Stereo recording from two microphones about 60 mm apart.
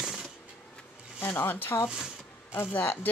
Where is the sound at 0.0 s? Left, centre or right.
Centre.